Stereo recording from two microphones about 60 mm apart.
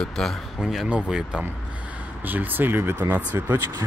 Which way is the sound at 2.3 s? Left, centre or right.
Right.